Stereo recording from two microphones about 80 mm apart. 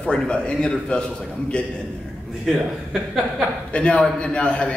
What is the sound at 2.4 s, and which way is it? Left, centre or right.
A man's voice, centre.